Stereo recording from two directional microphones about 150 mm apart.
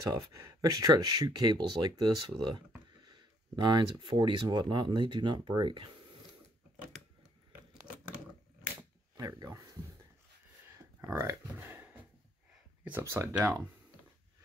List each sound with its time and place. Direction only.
0.1 s speech: 25° right (ahead or behind)
9.1 s speech: 25° right (ahead or behind)
10.7 s a sound: 20° right (ahead or behind)
12.8 s speech: 15° right (ahead or behind)